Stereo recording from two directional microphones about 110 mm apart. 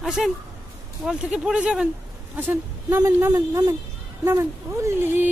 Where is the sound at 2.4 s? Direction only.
20° right (ahead or behind).